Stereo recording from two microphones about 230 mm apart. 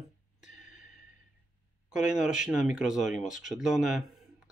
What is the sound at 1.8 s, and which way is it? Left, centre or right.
Speech, centre.